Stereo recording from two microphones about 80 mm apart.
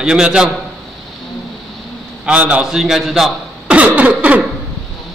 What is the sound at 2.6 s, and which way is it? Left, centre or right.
Speech, centre.